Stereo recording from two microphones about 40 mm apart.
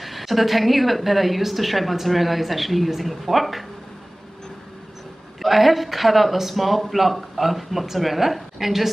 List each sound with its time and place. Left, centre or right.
0.0 s a woman's voice: centre
5.4 s a woman's voice: centre